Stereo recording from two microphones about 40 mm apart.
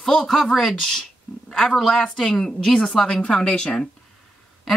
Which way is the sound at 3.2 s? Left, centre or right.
Left.